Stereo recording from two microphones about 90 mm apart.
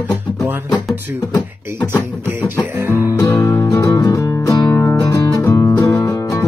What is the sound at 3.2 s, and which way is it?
Music, 35° left (ahead or behind).